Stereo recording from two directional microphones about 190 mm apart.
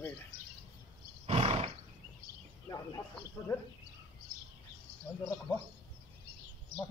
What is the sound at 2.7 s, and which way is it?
Speech, 20° left (ahead or behind).